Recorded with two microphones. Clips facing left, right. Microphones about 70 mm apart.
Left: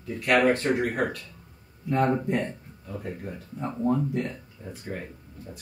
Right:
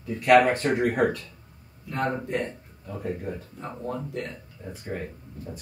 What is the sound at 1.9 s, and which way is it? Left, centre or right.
Speech, centre.